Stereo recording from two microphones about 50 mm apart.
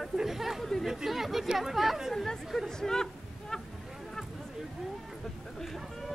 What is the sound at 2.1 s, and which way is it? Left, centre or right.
Speech, centre.